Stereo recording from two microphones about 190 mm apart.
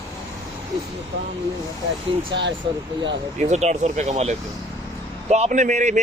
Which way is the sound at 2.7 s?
25° right (ahead or behind).